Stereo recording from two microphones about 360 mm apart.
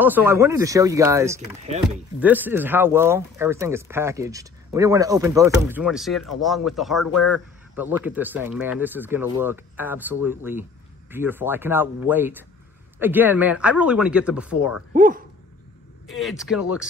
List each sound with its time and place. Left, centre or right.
0.0 s speech: centre
14.9 s speech: right
16.1 s speech: centre